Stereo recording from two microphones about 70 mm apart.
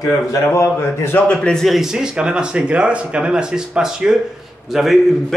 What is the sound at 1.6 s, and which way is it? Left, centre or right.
A man's voice, centre.